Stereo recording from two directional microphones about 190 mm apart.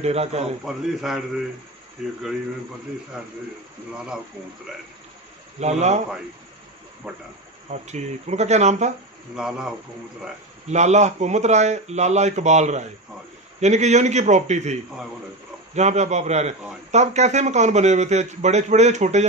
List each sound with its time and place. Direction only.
0.0 s a man's voice: 35° right (ahead or behind)
0.7 s a man's voice: centre (ahead or behind)
5.6 s a man's voice: 35° right (ahead or behind)
7.0 s a man's voice: 5° right (ahead or behind)
7.7 s a man's voice: 35° right (ahead or behind)
9.3 s a man's voice: 5° right (ahead or behind)
10.7 s a man's voice: 35° right (ahead or behind)